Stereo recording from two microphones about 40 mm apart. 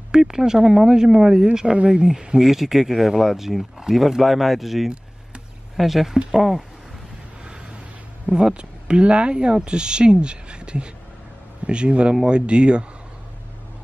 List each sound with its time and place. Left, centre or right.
0.1 s speech: centre
2.0 s speech: centre
8.5 s speech: right